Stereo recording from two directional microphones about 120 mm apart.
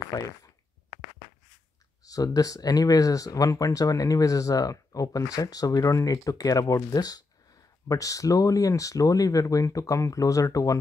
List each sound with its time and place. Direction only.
0.1 s speech: 30° left (ahead or behind)
2.0 s speech: 30° left (ahead or behind)